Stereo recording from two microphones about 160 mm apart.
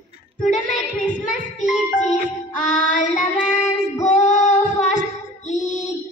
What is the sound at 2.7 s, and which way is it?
Child singing, 50° left (ahead or behind).